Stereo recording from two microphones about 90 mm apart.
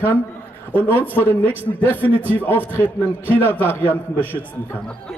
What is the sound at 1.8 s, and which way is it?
A man's voice, 20° left (ahead or behind).